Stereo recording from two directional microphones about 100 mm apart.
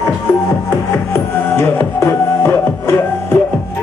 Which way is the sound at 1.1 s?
25° left (ahead or behind).